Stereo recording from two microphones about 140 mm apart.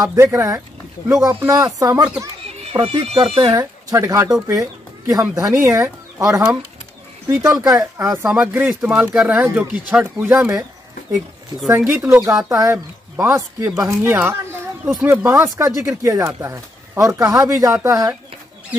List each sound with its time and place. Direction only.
0.0 s speech: 25° right (ahead or behind)
2.7 s speech: 40° right (ahead or behind)
3.5 s speech: 25° right (ahead or behind)
8.3 s speech: 10° right (ahead or behind)
12.4 s speech: 25° right (ahead or behind)